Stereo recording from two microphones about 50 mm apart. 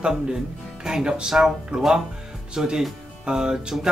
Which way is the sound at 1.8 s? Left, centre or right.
Centre.